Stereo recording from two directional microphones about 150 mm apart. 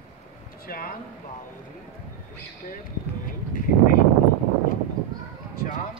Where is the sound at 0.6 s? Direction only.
75° left (ahead or behind).